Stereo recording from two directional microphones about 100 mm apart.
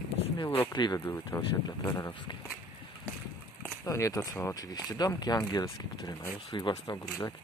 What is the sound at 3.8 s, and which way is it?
Speech, 35° left (ahead or behind).